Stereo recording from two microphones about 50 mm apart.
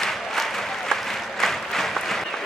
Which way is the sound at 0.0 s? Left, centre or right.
Centre.